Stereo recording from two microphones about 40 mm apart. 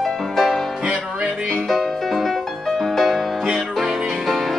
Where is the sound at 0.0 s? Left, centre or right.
Centre.